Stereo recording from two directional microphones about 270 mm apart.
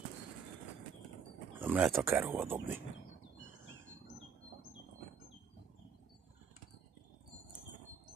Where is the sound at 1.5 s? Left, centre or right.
Centre.